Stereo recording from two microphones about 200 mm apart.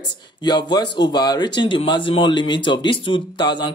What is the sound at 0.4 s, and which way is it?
Speech, 20° left (ahead or behind).